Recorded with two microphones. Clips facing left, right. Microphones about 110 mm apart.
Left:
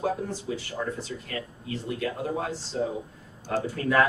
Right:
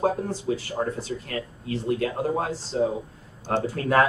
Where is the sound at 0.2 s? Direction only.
40° right (ahead or behind).